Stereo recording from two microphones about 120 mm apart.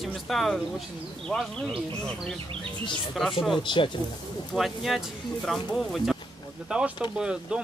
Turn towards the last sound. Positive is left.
turn(degrees=-10)  # may be behind; listen again after turning